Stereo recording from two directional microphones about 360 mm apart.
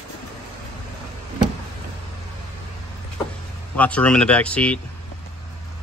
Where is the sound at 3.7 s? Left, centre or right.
Centre.